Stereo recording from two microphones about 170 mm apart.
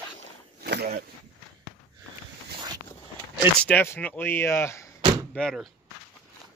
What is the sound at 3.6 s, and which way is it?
Speech, 10° left (ahead or behind).